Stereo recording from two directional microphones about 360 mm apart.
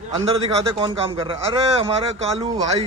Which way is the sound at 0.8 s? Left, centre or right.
Centre.